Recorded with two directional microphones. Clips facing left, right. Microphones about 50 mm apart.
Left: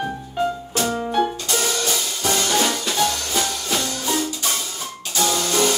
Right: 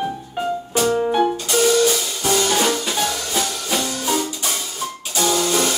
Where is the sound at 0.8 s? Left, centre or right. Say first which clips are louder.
Right 4 dB; centre.